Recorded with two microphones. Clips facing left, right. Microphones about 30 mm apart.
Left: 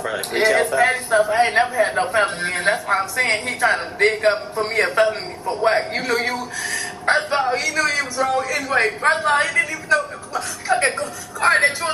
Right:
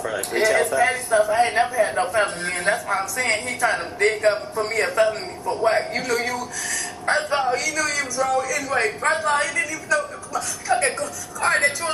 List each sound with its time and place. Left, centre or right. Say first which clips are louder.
0.5 s a woman's voice: left 3 dB; left